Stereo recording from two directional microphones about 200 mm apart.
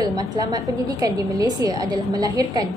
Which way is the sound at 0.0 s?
20° right (ahead or behind).